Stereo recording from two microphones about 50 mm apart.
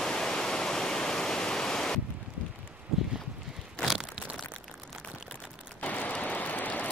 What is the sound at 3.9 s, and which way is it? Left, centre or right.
Crumpling, centre.